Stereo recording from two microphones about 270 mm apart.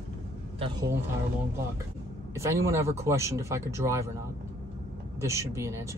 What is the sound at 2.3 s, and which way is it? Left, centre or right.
Speech, centre.